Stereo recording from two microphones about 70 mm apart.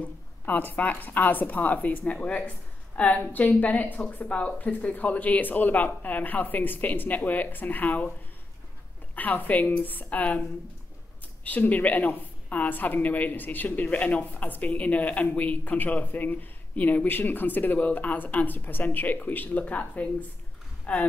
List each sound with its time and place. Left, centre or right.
0.0 s speech: left
9.1 s speech: left
11.4 s speech: left